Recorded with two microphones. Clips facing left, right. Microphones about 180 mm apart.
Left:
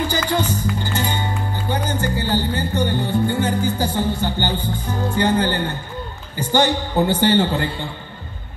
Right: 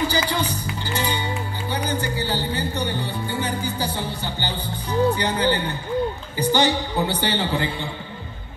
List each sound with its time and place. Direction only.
0.1 s music: 50° left (ahead or behind)
6.3 s a woman's voice: 50° left (ahead or behind)